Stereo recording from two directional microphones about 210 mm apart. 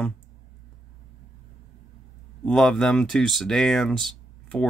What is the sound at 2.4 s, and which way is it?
Speech, centre (ahead or behind).